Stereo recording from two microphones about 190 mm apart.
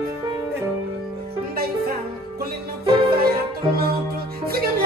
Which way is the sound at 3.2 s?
50° right (ahead or behind).